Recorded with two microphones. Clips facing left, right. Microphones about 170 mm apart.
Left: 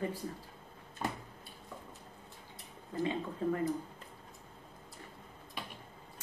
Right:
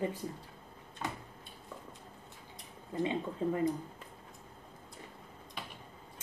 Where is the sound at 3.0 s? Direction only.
20° right (ahead or behind).